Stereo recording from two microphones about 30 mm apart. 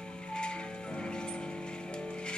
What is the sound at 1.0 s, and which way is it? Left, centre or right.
Music, left.